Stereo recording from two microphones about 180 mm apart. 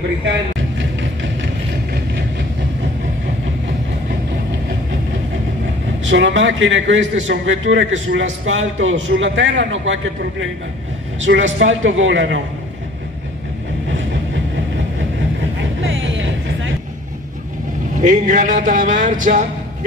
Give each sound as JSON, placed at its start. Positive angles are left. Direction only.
{"t": 0.2, "sound": "vehicle", "side_deg": -90}
{"t": 6.0, "sound": "a man's voice", "side_deg": -90}
{"t": 11.2, "sound": "a man's voice", "side_deg": -90}
{"t": 15.8, "sound": "music", "side_deg": -90}
{"t": 17.9, "sound": "a man's voice", "side_deg": -45}